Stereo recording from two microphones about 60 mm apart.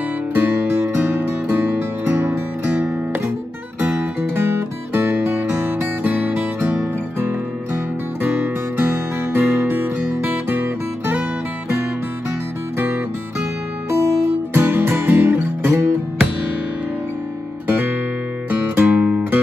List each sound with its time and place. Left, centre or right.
0.3 s music: right
3.8 s music: right
8.2 s music: right
12.7 s music: right
13.8 s music: right
14.5 s guitar: right
18.5 s music: right
18.9 s music: centre